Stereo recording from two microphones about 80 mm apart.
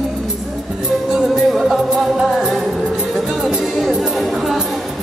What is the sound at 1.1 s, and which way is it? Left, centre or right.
Music, centre.